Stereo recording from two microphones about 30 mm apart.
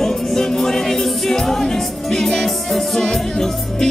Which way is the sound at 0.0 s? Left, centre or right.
Centre.